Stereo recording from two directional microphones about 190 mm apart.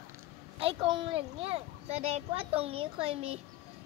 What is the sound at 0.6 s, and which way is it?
Speech, 25° right (ahead or behind).